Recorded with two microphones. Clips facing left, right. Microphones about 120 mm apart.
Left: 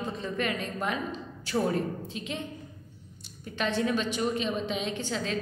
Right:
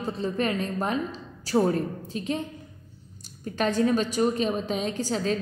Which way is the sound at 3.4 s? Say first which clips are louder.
Right 5 dB; 40° right (ahead or behind).